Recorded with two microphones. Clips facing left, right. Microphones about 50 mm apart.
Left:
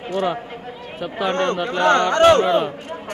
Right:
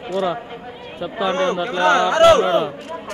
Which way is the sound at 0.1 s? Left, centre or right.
Left.